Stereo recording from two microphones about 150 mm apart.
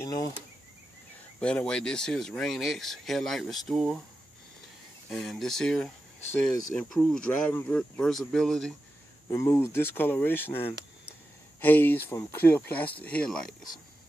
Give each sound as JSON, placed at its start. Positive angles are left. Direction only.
{"t": 0.0, "sound": "cricket", "side_deg": 25}
{"t": 1.4, "sound": "speech", "side_deg": 5}
{"t": 5.1, "sound": "speech", "side_deg": 5}
{"t": 9.3, "sound": "speech", "side_deg": 20}